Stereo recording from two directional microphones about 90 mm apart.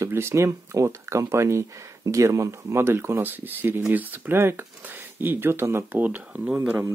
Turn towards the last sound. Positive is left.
turn(degrees=-15)  # may be behind; listen again after turning